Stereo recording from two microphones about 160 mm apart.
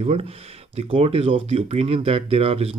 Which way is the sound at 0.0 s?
40° right (ahead or behind).